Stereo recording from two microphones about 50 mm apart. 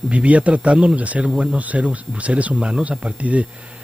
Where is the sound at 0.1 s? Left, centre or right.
Right.